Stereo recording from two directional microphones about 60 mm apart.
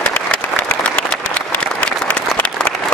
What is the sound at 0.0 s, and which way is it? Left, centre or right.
Applause, left.